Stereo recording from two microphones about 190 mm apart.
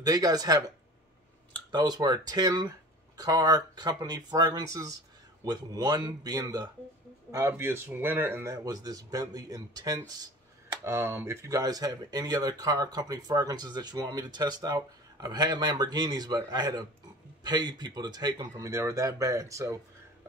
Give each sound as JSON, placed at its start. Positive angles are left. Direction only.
{"t": 0.0, "sound": "speech", "side_deg": -20}
{"t": 1.7, "sound": "speech", "side_deg": -20}